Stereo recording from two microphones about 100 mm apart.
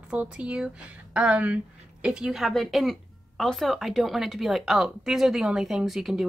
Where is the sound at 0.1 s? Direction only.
10° right (ahead or behind).